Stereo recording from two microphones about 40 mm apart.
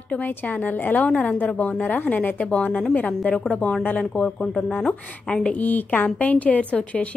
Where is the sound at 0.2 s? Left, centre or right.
Left.